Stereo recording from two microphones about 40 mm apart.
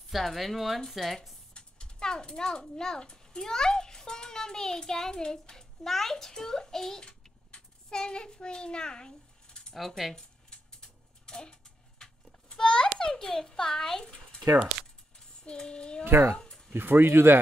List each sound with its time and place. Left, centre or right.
0.1 s speech: centre
1.5 s a child's voice: left
9.8 s speech: centre
10.1 s a sound: centre
13.0 s a child's voice: centre
14.7 s speech: centre
15.1 s child singing: left
16.3 s a sound: centre
16.7 s speech: right